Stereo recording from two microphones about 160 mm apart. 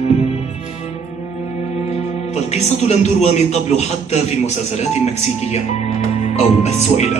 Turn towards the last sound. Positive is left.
turn(degrees=45)  # may be behind; listen again after turning